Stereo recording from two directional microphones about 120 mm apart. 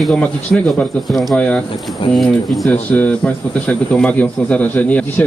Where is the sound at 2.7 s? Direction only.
10° left (ahead or behind).